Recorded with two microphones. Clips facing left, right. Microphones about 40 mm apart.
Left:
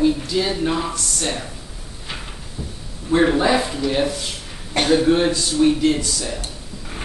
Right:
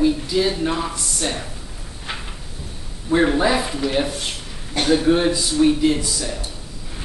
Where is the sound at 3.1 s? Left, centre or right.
Centre.